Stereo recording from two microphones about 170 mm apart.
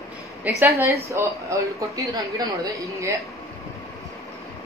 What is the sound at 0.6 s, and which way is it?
A man's voice, 15° right (ahead or behind).